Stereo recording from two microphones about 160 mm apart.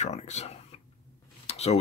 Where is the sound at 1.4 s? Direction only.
40° left (ahead or behind).